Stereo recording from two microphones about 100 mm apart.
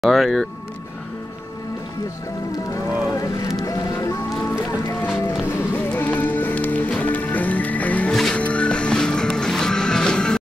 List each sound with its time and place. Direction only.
0.0 s speech: centre (ahead or behind)
2.7 s music: 35° left (ahead or behind)
5.5 s music: 20° left (ahead or behind)